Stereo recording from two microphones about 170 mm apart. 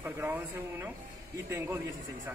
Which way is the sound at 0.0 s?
10° right (ahead or behind).